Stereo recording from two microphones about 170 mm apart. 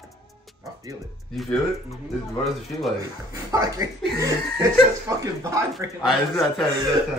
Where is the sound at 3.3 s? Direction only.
20° right (ahead or behind).